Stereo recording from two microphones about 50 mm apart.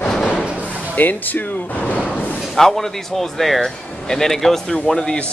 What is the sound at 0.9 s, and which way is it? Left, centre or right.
Speech, left.